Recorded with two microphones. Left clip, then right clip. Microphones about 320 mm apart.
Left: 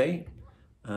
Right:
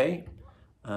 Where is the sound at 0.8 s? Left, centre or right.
Centre.